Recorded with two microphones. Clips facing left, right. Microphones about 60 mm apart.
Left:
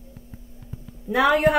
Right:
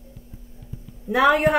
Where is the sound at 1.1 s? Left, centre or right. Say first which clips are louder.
Right 2 dB; right.